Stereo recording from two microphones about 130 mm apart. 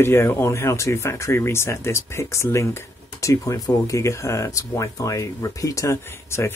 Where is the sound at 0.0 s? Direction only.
20° left (ahead or behind).